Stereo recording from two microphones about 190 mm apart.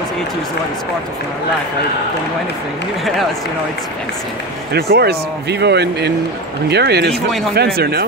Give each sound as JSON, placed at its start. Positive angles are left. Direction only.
{"t": 4.7, "sound": "speech", "side_deg": -55}